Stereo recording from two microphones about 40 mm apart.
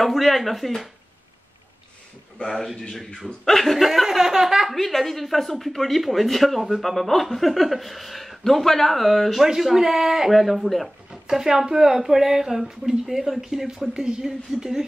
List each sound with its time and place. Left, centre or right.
0.0 s speech: centre
2.4 s speech: centre
4.7 s speech: centre
11.1 s speech: centre